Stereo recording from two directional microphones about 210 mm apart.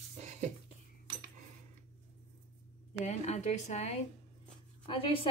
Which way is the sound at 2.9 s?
30° left (ahead or behind).